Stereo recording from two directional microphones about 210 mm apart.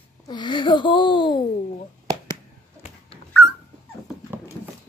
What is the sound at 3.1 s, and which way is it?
Dog, 25° left (ahead or behind).